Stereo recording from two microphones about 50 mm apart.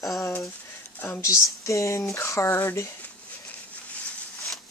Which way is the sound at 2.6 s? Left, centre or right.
Left.